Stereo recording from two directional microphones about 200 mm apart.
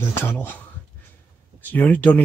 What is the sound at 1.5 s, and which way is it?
Speech, 10° left (ahead or behind).